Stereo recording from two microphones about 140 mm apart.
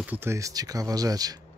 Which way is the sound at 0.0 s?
15° right (ahead or behind).